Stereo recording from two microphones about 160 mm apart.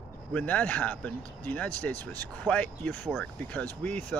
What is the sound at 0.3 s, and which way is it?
Speech, 10° left (ahead or behind).